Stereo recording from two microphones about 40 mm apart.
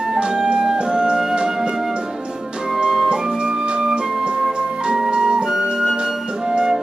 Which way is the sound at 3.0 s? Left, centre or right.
Right.